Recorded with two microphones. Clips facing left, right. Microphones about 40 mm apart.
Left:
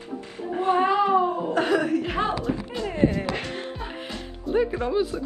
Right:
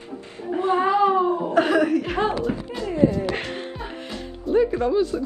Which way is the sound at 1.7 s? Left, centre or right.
Right.